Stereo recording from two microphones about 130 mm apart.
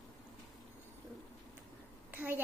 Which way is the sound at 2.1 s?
15° right (ahead or behind).